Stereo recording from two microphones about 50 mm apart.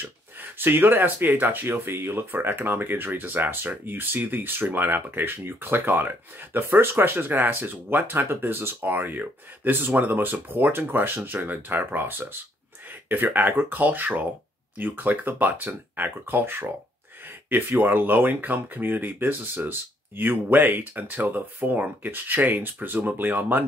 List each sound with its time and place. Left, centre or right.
0.0 s speech: right